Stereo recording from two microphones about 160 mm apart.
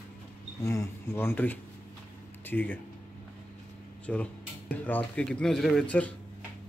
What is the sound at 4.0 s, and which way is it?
Speech, 10° left (ahead or behind).